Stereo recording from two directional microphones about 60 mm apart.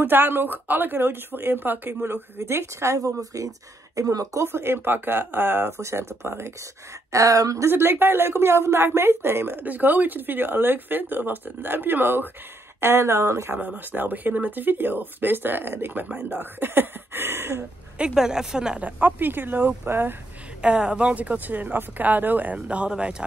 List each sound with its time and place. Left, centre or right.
0.0 s speech: right
2.3 s a woman's voice: right
4.4 s speech: right
5.8 s speech: right
7.1 s a woman's voice: right
7.6 s speech: right
12.8 s speech: right
13.6 s speech: right
17.9 s speech: centre
18.8 s speech: right
20.6 s speech: centre